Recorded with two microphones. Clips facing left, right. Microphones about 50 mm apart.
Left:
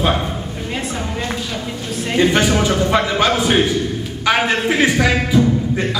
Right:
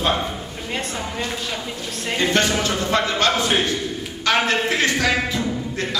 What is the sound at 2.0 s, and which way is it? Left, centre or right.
A man's voice, centre.